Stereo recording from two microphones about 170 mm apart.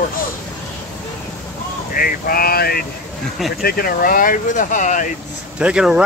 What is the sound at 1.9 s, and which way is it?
Speech, 60° left (ahead or behind).